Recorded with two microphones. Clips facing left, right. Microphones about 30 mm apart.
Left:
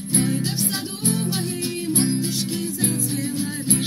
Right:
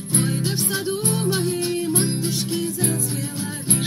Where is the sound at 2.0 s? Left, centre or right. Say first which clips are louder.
Left 2 dB; centre.